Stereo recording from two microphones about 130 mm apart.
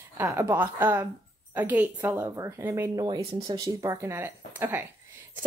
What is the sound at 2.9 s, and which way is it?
Speech, 30° right (ahead or behind).